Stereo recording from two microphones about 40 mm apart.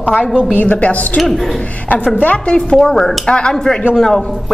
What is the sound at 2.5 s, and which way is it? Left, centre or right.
A woman's voice, centre.